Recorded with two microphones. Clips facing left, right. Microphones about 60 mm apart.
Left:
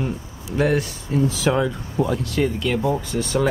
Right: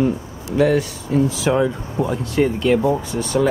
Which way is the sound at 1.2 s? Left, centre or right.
Centre.